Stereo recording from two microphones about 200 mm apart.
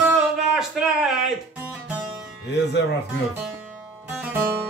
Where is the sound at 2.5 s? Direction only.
60° left (ahead or behind).